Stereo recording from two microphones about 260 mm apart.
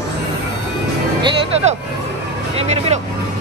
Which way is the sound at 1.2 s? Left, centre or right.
Right.